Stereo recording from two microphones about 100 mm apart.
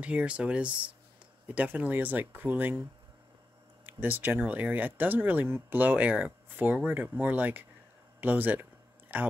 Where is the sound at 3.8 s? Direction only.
20° right (ahead or behind).